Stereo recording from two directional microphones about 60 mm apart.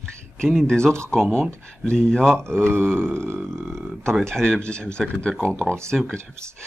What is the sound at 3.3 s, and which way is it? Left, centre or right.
Speech, centre.